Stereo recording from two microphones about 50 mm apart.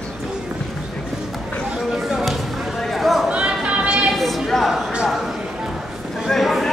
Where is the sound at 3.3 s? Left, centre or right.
Right.